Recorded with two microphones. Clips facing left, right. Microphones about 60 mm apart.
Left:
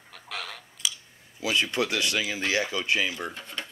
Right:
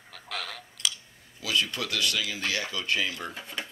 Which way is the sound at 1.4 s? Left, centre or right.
Left.